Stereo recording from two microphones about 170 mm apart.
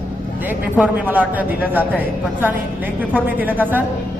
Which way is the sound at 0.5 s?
10° right (ahead or behind).